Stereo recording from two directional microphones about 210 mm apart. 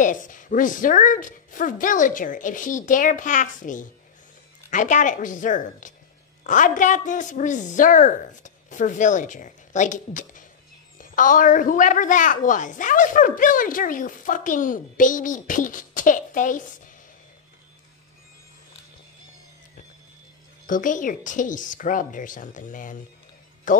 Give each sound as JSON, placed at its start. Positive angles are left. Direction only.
{"t": 0.0, "sound": "a woman's voice", "side_deg": 40}
{"t": 20.6, "sound": "a woman's voice", "side_deg": 40}